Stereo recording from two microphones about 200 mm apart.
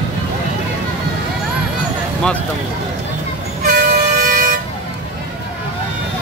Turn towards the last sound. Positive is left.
turn(degrees=-45)  # may be behind; listen again after turning